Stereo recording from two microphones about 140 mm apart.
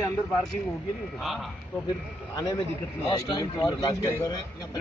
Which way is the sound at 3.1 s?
25° left (ahead or behind).